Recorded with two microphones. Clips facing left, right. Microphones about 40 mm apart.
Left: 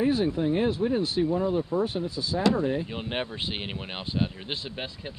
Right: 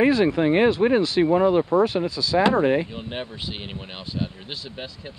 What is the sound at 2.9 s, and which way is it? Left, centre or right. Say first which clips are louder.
Speech: left 1 dB; left.